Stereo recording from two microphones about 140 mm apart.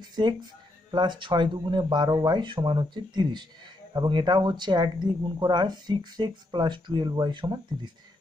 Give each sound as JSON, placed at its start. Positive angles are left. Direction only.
{"t": 0.1, "sound": "speech", "side_deg": -30}